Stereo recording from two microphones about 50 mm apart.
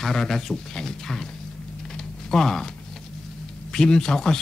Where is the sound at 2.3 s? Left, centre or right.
Centre.